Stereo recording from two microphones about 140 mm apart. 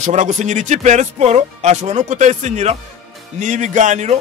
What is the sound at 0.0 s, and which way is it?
Speech, 60° right (ahead or behind).